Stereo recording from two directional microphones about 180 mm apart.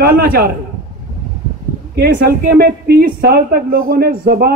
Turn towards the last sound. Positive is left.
turn(degrees=-60)  # may be behind; listen again after turning